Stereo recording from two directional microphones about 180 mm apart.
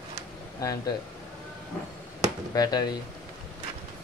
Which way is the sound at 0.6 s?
20° left (ahead or behind).